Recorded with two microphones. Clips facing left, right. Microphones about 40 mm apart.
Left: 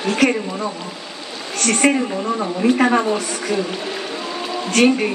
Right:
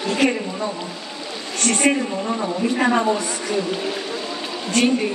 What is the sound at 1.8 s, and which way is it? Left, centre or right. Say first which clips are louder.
Speech: left 3 dB; left.